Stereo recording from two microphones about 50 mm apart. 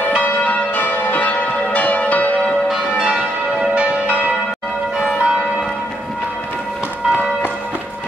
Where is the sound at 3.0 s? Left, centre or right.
Centre.